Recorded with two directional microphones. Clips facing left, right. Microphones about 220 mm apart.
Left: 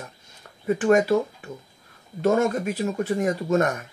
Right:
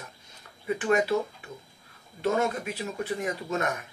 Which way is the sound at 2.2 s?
45° left (ahead or behind).